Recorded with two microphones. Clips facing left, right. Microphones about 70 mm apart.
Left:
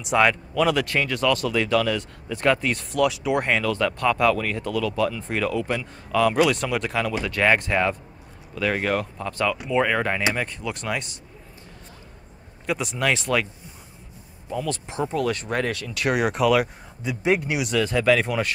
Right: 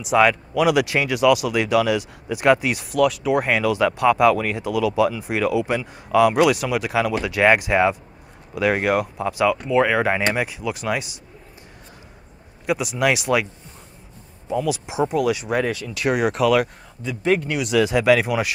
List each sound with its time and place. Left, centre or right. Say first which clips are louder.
0.0 s speech: right 3 dB; centre
12.6 s speech: right 4 dB; centre
14.5 s speech: right 5 dB; centre
17.0 s speech: right 2 dB; centre
17.6 s speech: right 4 dB; centre